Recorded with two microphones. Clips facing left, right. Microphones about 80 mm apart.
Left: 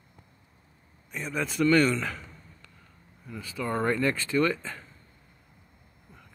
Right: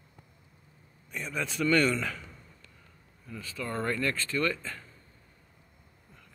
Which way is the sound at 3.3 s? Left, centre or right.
Centre.